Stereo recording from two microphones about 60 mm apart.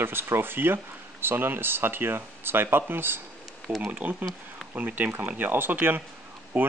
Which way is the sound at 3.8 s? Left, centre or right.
Right.